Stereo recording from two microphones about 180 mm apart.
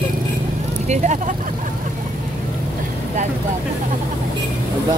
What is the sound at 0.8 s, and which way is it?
Speech, 40° right (ahead or behind).